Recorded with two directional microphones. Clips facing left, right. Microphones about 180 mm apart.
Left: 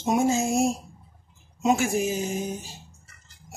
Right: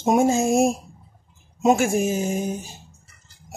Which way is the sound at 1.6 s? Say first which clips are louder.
Right 4 dB; 50° right (ahead or behind).